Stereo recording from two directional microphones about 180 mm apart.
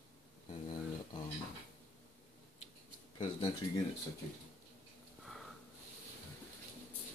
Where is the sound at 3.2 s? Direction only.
30° left (ahead or behind).